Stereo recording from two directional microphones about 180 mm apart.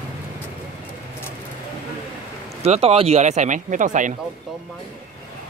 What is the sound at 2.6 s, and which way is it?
Speech, 35° right (ahead or behind).